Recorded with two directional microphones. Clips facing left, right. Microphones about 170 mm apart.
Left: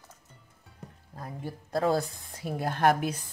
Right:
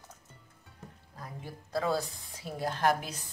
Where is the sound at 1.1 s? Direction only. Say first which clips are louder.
Left 6 dB; 50° left (ahead or behind).